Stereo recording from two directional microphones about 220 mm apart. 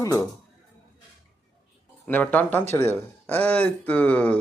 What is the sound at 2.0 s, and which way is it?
Speech, 10° left (ahead or behind).